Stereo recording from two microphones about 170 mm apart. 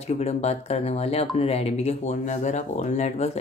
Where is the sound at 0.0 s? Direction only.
40° left (ahead or behind).